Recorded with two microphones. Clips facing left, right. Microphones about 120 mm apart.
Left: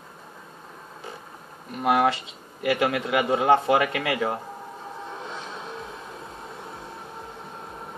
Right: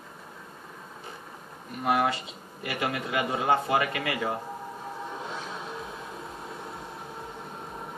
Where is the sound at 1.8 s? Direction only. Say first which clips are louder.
Left 4 dB; 80° left.